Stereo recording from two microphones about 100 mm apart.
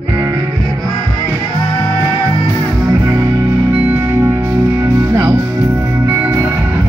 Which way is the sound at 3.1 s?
35° right (ahead or behind).